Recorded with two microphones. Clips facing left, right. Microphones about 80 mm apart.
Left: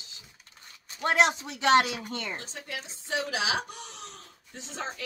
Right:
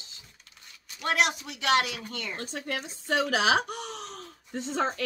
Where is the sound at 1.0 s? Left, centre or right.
Left.